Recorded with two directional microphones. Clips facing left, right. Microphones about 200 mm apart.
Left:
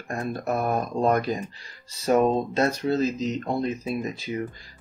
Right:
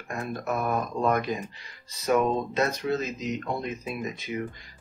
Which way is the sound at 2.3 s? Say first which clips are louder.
Left 3 dB; 30° left (ahead or behind).